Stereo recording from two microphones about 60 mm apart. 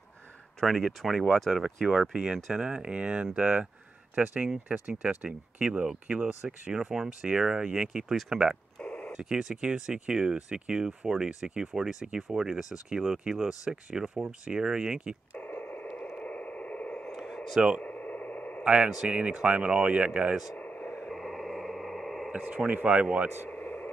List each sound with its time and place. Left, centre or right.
0.6 s speech: centre
8.8 s telephone: left
9.1 s speech: centre
15.3 s radio: left
17.1 s a sound: centre
17.6 s speech: centre
17.8 s a sound: left
18.6 s speech: centre
20.5 s a sound: left
21.1 s radio: centre
22.3 s speech: centre
23.5 s vehicle: left